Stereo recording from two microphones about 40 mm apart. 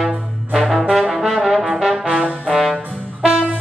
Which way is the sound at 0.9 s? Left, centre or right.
Centre.